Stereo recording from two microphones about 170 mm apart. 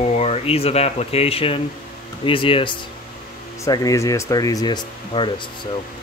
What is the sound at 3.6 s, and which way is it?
Speech, 20° left (ahead or behind).